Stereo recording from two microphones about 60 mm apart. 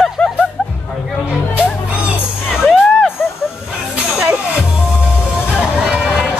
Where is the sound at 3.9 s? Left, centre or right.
Right.